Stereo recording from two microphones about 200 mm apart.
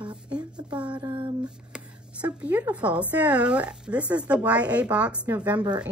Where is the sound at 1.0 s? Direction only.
25° right (ahead or behind).